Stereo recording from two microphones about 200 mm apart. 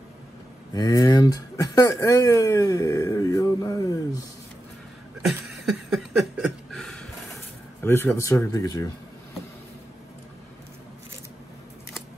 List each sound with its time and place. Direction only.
0.7 s speech: 20° left (ahead or behind)
5.2 s a sound: centre (ahead or behind)
7.8 s speech: 10° left (ahead or behind)